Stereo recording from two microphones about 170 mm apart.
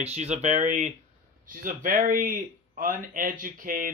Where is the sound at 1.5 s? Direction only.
55° right (ahead or behind).